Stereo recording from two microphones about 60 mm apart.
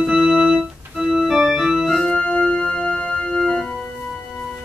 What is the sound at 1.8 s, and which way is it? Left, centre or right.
Organ, centre.